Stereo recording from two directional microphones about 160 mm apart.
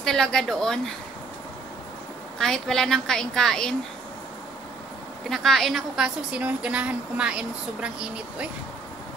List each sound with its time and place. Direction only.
0.0 s a woman's voice: centre (ahead or behind)
2.3 s a woman's voice: 5° left (ahead or behind)
5.3 s a woman's voice: centre (ahead or behind)